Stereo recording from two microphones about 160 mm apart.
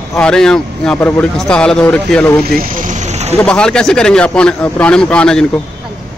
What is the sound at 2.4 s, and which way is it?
Vehicle, 65° right (ahead or behind).